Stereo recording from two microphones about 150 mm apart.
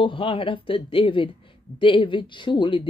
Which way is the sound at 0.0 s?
35° left (ahead or behind).